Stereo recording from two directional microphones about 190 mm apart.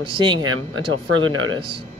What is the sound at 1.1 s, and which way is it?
Speech, 90° right.